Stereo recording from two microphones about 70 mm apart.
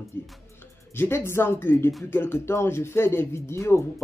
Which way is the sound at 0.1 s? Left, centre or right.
Left.